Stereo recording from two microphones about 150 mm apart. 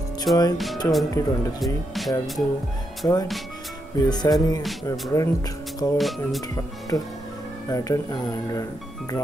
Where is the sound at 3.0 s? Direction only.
20° left (ahead or behind).